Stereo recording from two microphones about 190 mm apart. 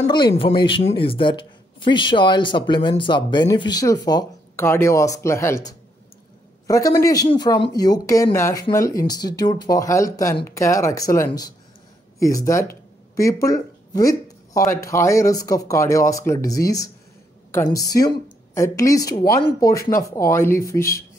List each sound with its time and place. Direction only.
0.0 s a woman's voice: 25° left (ahead or behind)